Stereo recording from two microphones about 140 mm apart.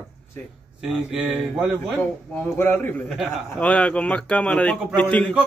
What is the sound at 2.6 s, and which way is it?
Speech, 15° left (ahead or behind).